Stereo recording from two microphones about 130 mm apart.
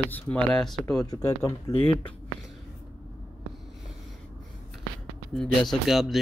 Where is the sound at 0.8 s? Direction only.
25° left (ahead or behind).